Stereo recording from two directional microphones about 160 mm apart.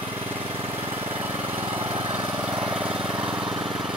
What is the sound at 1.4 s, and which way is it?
Lawn mower, 35° right (ahead or behind).